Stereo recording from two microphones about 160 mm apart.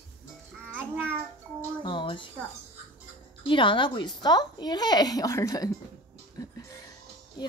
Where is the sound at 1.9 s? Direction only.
30° left (ahead or behind).